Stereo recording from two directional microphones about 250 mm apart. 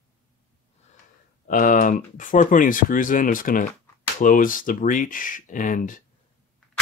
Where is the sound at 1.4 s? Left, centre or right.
Left.